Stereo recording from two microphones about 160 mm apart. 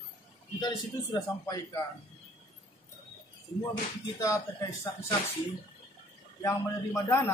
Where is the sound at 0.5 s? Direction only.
25° left (ahead or behind).